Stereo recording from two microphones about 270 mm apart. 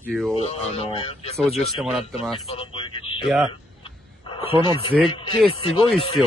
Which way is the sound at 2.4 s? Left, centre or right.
Centre.